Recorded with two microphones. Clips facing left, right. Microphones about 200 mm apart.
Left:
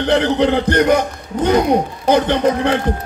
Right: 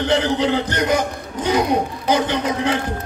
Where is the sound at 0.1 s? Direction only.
60° left (ahead or behind).